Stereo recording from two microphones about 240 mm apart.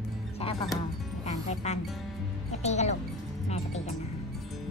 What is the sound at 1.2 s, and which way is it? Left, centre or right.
Speech, left.